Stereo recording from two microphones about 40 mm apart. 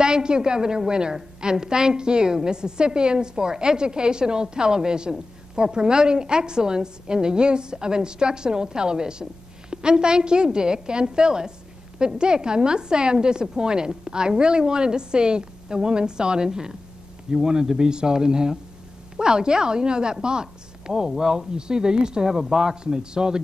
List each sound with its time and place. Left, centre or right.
0.0 s a woman's voice: centre